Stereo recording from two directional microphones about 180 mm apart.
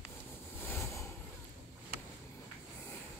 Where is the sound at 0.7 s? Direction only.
15° left (ahead or behind).